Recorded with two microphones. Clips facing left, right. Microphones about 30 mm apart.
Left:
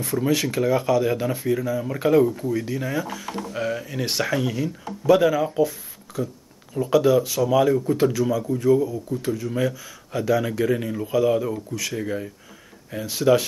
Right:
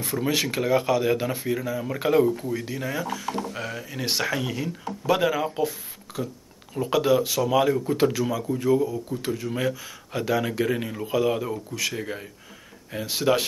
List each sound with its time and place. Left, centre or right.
0.0 s speech: centre